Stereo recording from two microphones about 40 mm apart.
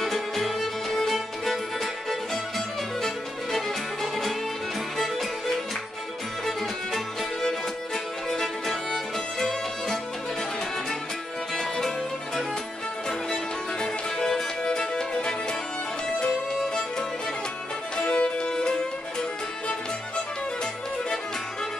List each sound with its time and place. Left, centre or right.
0.0 s music: centre
3.5 s music: centre
7.4 s music: centre
11.5 s music: centre
13.3 s music: centre
18.0 s music: left
18.4 s music: centre